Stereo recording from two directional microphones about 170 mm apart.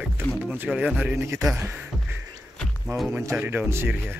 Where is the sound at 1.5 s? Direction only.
10° right (ahead or behind).